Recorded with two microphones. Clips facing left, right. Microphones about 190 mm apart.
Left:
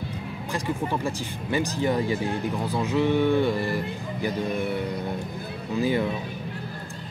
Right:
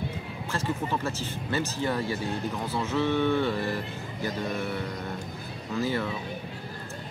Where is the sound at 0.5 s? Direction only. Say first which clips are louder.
Left 2 dB; 15° left (ahead or behind).